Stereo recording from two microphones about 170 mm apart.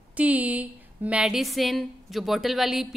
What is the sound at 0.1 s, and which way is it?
Speech, 10° right (ahead or behind).